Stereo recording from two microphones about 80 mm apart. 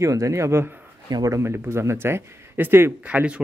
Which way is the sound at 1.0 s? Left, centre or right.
Right.